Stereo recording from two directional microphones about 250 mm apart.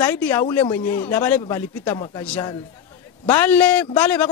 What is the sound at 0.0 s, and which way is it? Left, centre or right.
Speech, centre.